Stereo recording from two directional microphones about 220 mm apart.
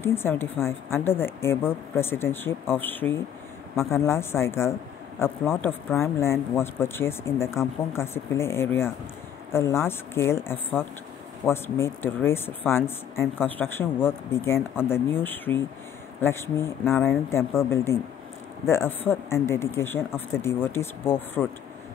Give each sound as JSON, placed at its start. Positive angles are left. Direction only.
{"t": 0.0, "sound": "speech", "side_deg": 10}